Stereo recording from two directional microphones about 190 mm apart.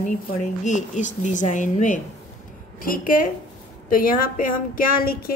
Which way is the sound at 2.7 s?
50° left (ahead or behind).